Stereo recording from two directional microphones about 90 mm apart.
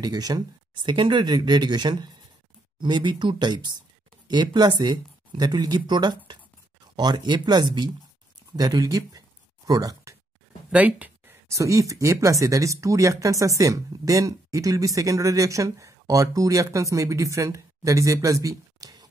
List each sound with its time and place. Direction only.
0.0 s speech: 45° right (ahead or behind)
0.8 s speech: 65° right (ahead or behind)
8.5 s speech: 45° right (ahead or behind)
9.7 s a sound: 40° right (ahead or behind)
10.7 s a sound: 15° right (ahead or behind)
11.5 s speech: 35° right (ahead or behind)